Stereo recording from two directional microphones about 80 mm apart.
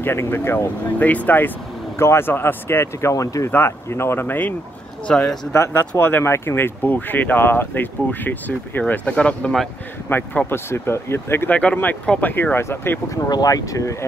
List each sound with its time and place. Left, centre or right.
0.0 s speech: left
2.0 s speech: left
5.0 s speech: centre
5.5 s speech: left; by 9.6 s centre
10.0 s speech: left
11.5 s speech: centre
13.1 s speech: left